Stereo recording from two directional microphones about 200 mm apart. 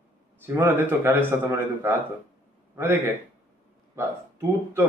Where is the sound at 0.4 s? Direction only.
10° right (ahead or behind).